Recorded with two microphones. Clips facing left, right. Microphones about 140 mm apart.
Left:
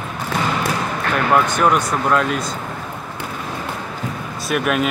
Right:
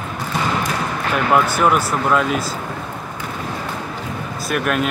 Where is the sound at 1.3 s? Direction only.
5° right (ahead or behind).